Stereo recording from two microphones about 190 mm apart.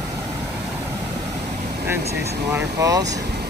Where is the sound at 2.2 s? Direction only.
60° right (ahead or behind).